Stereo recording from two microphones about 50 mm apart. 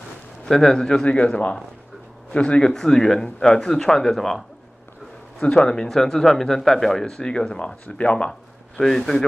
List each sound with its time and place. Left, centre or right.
0.5 s speech: centre
2.7 s speech: centre
5.4 s speech: left